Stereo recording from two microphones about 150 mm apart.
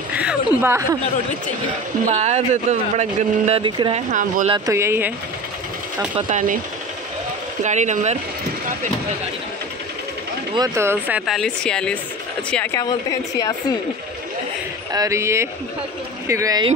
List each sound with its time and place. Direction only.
0.1 s a sound: 10° right (ahead or behind)
2.0 s speech: 50° right (ahead or behind)
3.6 s speech: 30° right (ahead or behind)
3.9 s speech: 55° right (ahead or behind)
4.6 s speech: 20° right (ahead or behind)
6.3 s speech: 60° right (ahead or behind)
7.6 s speech: 50° right (ahead or behind)
10.5 s speech: 20° right (ahead or behind)
11.3 s a woman's voice: 5° left (ahead or behind)
12.7 s a woman's voice: 25° left (ahead or behind)
14.9 s speech: 25° right (ahead or behind)